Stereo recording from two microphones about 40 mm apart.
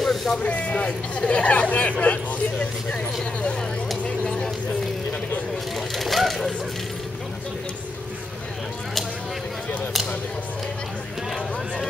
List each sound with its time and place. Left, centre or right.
0.0 s a sound: centre
0.4 s speech: left
5.8 s vehicle: centre